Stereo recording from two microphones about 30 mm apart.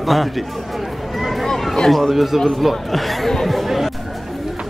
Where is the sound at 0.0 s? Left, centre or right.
Centre.